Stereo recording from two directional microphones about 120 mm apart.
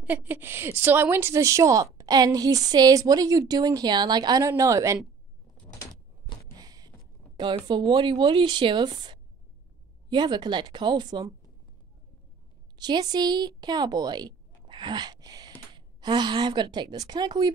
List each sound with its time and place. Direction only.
0.0 s a woman's voice: 15° right (ahead or behind)
6.5 s a sound: 30° right (ahead or behind)
7.3 s speech: 40° right (ahead or behind)
12.7 s a woman's voice: 35° right (ahead or behind)